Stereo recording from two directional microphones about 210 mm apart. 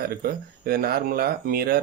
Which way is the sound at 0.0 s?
45° right (ahead or behind).